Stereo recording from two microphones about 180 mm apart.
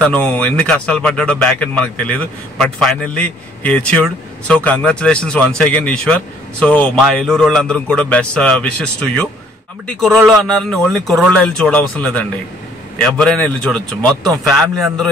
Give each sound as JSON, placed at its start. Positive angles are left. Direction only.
{"t": 0.0, "sound": "speech", "side_deg": 5}